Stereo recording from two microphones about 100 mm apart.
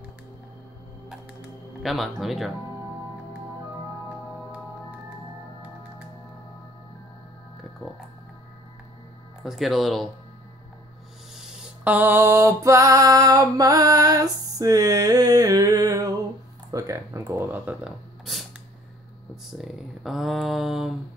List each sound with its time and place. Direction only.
1.8 s speech: centre (ahead or behind)
9.4 s speech: centre (ahead or behind)
11.3 s mantra: 5° right (ahead or behind); by 16.2 s 35° right (ahead or behind)
16.7 s speech: 30° right (ahead or behind)
18.3 s a sound: centre (ahead or behind)
19.6 s speech: centre (ahead or behind)